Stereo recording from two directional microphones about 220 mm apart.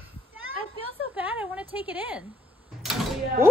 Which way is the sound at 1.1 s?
5° right (ahead or behind).